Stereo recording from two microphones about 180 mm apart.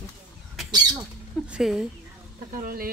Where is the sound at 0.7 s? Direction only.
20° right (ahead or behind).